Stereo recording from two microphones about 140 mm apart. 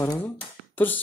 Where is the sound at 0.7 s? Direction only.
15° left (ahead or behind).